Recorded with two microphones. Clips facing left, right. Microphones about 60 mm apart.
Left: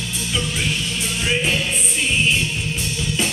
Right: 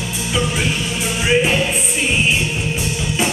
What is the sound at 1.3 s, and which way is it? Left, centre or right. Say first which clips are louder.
Music: right 6 dB; right.